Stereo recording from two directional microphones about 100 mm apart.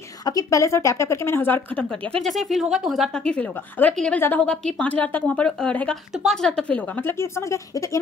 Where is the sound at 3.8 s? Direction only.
10° left (ahead or behind).